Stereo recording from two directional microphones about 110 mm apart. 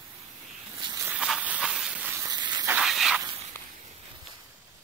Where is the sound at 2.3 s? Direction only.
40° right (ahead or behind).